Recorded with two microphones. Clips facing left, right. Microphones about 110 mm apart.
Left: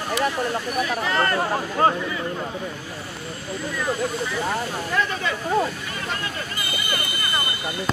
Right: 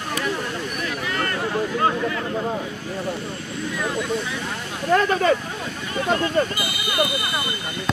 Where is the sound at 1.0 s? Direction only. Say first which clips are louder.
Left 2 dB; 40° left (ahead or behind).